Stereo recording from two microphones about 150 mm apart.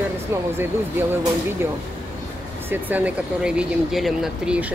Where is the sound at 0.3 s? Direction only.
15° right (ahead or behind).